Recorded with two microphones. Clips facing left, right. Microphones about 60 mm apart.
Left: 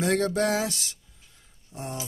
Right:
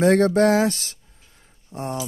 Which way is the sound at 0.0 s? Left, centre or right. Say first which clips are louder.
Right 8 dB; right.